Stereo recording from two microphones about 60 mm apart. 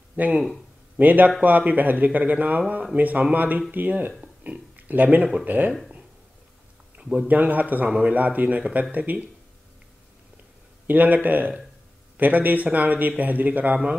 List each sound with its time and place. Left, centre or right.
0.1 s speech: right
7.0 s a sound: centre
7.2 s speech: right
10.9 s speech: right